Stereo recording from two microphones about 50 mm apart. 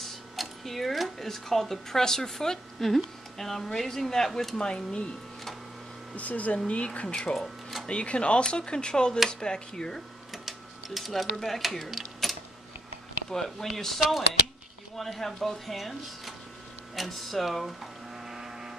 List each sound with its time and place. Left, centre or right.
0.0 s speech: centre
4.6 s speech: centre
6.1 s speech: left
7.3 s a sound: centre
7.8 s speech: left
10.3 s speech: centre
12.2 s typing: centre
13.3 s speech: centre
16.9 s a sound: centre